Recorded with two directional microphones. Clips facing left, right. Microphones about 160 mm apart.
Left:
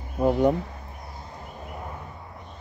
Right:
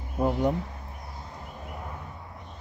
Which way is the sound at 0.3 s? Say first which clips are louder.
Left 7 dB; 55° left (ahead or behind).